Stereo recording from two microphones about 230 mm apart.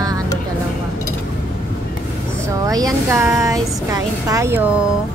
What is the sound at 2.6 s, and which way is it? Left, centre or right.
Speech, centre.